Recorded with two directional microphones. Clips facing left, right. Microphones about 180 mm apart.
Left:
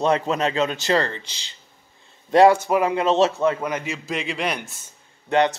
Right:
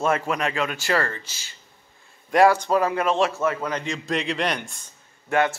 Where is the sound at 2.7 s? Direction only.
15° left (ahead or behind).